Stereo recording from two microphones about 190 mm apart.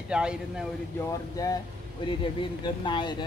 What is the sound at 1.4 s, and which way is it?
Speech, 20° left (ahead or behind).